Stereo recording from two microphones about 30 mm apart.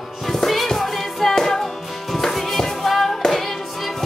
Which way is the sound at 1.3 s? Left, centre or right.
Centre.